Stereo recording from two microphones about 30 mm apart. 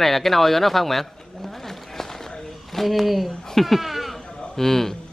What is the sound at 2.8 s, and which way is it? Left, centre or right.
Speech, centre.